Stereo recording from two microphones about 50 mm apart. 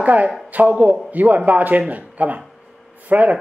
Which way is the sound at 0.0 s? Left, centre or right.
Right.